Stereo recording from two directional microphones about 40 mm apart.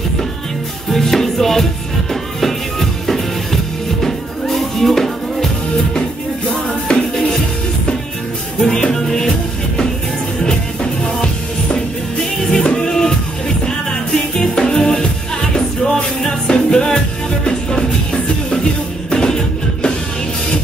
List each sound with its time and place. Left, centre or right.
0.8 s music: centre
6.9 s music: centre
8.5 s music: centre
10.4 s music: centre
12.5 s music: left